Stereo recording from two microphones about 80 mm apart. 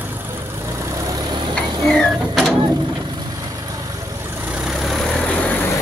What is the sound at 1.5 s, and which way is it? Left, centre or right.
Mechanisms, centre.